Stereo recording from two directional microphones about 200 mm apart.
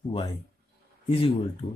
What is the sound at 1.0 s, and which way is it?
Speech, 25° left (ahead or behind).